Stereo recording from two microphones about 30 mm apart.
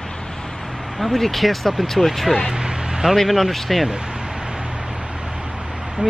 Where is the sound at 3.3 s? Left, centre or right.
Centre.